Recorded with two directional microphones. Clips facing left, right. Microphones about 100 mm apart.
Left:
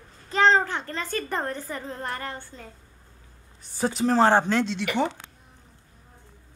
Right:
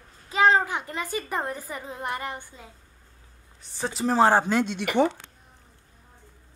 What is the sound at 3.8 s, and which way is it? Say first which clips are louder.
A child's voice: left 1 dB; centre (ahead or behind).